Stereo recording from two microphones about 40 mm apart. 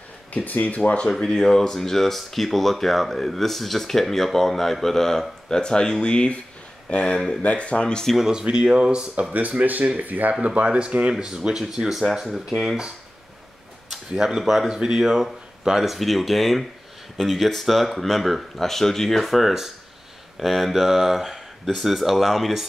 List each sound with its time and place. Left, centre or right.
0.3 s speech: left
1.4 s speech: centre
8.2 s speech: centre
9.3 s speech: right
10.4 s speech: right; by 12.7 s centre
14.1 s speech: centre
14.4 s speech: centre
14.7 s speech: centre